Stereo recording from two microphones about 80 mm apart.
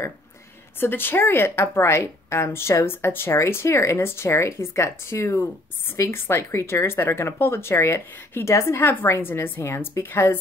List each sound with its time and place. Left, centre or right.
0.7 s a woman's voice: left